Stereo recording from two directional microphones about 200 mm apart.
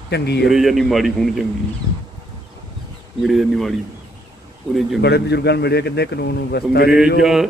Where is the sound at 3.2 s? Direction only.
Centre (ahead or behind).